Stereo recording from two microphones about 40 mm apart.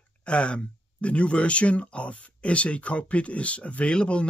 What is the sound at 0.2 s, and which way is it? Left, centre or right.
Speech, left.